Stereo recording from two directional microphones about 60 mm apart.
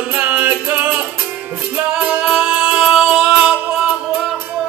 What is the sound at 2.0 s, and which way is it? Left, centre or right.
Music, centre.